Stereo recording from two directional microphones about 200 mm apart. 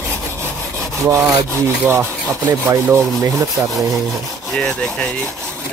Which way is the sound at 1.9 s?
15° right (ahead or behind).